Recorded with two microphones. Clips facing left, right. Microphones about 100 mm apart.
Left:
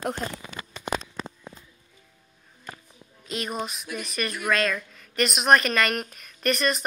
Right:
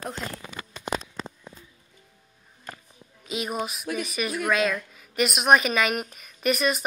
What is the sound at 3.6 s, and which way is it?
A woman's voice, 5° right (ahead or behind).